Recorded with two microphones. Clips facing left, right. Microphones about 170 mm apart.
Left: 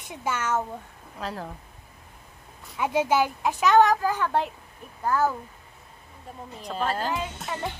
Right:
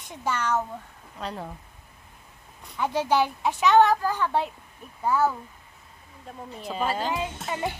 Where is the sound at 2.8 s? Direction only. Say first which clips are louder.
Left 1 dB; 5° left (ahead or behind).